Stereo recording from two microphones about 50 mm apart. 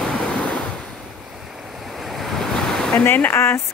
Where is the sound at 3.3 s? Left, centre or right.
Left.